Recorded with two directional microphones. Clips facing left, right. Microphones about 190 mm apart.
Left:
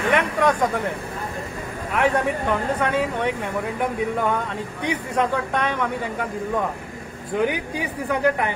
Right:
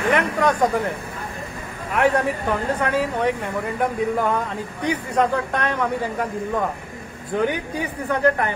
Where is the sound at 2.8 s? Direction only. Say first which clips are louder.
Right 1 dB; centre (ahead or behind).